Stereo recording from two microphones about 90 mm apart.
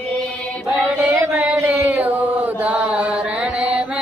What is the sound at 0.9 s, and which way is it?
Chant, 15° right (ahead or behind).